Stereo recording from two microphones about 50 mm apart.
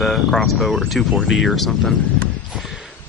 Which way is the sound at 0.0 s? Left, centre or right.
Centre.